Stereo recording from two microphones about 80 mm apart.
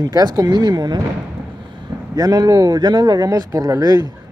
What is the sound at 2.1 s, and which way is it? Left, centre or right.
Speech, right.